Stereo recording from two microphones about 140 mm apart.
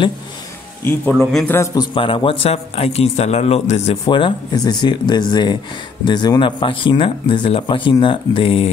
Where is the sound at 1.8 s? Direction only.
40° left (ahead or behind).